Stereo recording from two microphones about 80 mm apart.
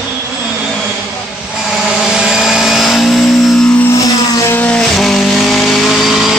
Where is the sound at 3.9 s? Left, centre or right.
Left.